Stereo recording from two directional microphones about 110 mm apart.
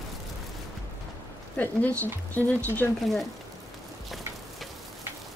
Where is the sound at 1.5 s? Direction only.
15° left (ahead or behind).